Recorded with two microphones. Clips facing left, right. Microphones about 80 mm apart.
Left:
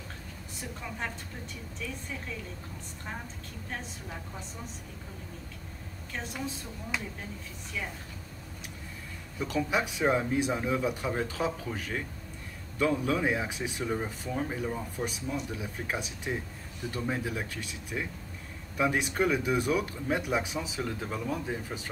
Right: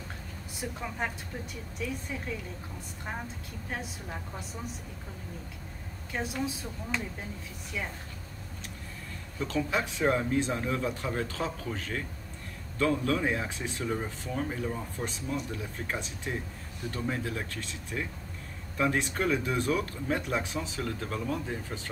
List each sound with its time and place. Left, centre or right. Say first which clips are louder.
0.7 s speech: right 2 dB; centre
6.1 s speech: right 4 dB; centre
6.9 s speech: right 1 dB; centre
9.4 s speech: left 1 dB; centre